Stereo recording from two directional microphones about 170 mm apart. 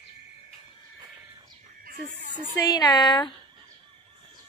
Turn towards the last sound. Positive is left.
turn(degrees=25)  # may be behind; listen again after turning